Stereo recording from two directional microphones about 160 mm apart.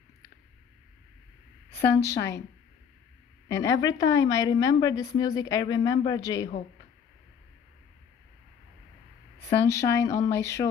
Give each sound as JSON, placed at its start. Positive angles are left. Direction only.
{"t": 2.0, "sound": "a woman's voice", "side_deg": 20}
{"t": 3.4, "sound": "a woman's voice", "side_deg": 20}
{"t": 9.6, "sound": "a woman's voice", "side_deg": 20}